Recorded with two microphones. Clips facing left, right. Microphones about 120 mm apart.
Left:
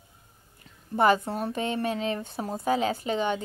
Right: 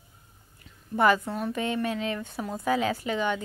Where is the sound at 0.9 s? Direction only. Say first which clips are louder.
Left 1 dB; 25° left (ahead or behind).